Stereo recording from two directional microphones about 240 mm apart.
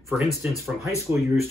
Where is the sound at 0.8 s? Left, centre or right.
Centre.